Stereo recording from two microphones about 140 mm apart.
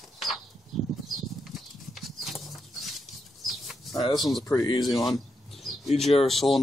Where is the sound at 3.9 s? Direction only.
35° left (ahead or behind).